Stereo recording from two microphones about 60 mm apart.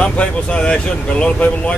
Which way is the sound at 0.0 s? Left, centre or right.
Centre.